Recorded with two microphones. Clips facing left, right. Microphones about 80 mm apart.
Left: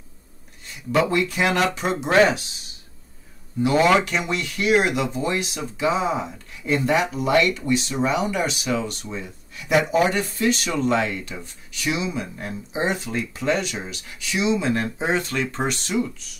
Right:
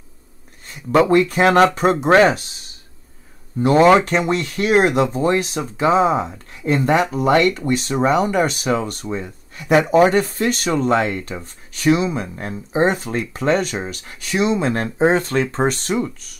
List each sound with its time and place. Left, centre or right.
0.7 s speech: right
3.6 s speech: right